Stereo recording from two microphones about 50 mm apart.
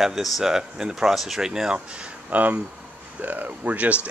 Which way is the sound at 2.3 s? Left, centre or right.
Right.